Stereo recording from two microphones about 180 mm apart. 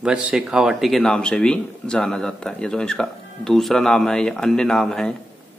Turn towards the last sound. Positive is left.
turn(degrees=5)  # may be behind; listen again after turning